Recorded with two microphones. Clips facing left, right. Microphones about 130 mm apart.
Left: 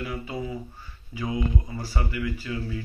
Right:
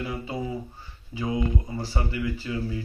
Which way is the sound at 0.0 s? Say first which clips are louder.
Right 1 dB; 25° right (ahead or behind).